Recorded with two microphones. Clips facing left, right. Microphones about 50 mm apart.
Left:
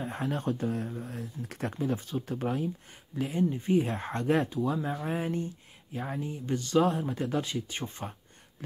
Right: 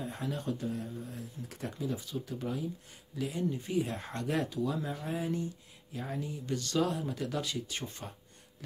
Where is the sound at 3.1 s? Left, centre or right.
Left.